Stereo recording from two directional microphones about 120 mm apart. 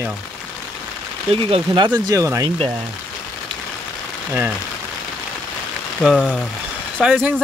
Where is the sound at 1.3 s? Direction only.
50° right (ahead or behind).